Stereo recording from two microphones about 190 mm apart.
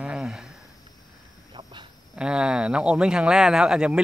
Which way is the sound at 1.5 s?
25° right (ahead or behind).